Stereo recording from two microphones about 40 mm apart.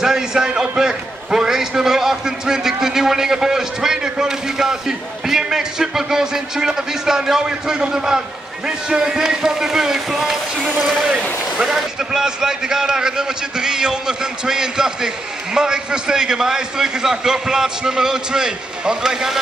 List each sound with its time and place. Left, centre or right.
0.0 s a man's voice: centre